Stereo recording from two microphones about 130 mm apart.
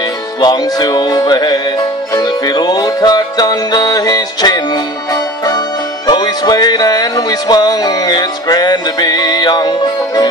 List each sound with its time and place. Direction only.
0.4 s music: 30° left (ahead or behind)